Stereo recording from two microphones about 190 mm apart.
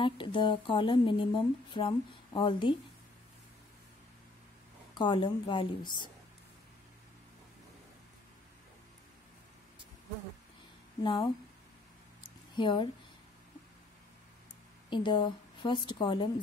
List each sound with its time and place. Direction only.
0.0 s speech: 25° left (ahead or behind)
4.9 s speech: 25° left (ahead or behind)
11.0 s speech: 20° left (ahead or behind)
12.5 s speech: 25° left (ahead or behind)
14.9 s a woman's voice: 25° left (ahead or behind)